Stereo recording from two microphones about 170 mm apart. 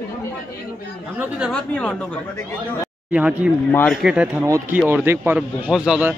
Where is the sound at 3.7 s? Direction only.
10° left (ahead or behind).